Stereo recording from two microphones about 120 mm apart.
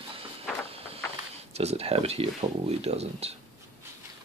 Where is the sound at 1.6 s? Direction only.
60° right (ahead or behind).